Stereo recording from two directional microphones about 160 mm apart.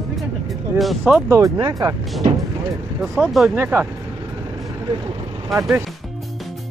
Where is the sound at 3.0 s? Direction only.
5° right (ahead or behind).